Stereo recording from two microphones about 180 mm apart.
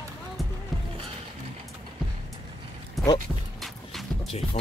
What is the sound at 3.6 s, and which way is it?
Music, centre (ahead or behind).